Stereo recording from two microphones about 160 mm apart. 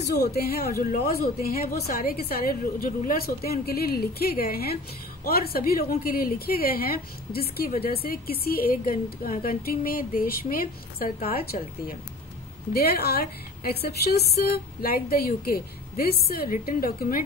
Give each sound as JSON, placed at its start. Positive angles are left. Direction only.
{"t": 0.1, "sound": "a woman's voice", "side_deg": 85}
{"t": 12.7, "sound": "a woman's voice", "side_deg": 75}